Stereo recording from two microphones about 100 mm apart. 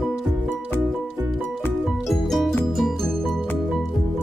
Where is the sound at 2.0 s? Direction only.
Centre (ahead or behind).